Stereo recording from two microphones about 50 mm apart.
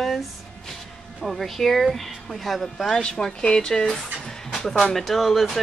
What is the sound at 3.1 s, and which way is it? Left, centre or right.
A woman's voice, centre.